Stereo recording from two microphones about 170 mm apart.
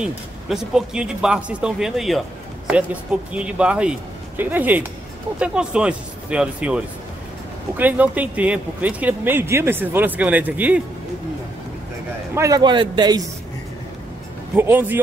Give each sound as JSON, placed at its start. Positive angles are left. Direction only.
{"t": 0.0, "sound": "speech", "side_deg": -5}
{"t": 12.4, "sound": "a man's voice", "side_deg": -20}
{"t": 14.5, "sound": "speech", "side_deg": -10}